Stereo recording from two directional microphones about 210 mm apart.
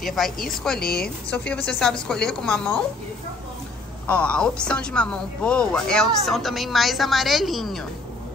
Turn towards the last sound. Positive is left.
turn(degrees=0)  # may be behind; listen again after turning